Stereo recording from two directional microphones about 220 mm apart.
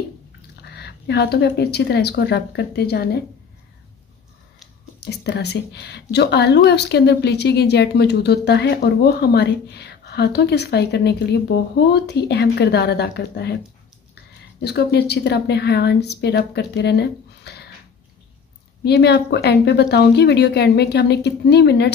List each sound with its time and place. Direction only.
0.6 s speech: 50° left (ahead or behind)
5.0 s speech: 50° left (ahead or behind)
14.6 s speech: 50° left (ahead or behind)
18.9 s speech: 50° left (ahead or behind)